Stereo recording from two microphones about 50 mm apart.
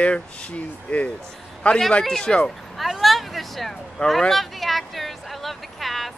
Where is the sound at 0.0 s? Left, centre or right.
Left.